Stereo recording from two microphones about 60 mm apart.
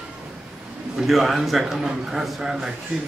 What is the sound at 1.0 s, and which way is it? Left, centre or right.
A man's voice, centre.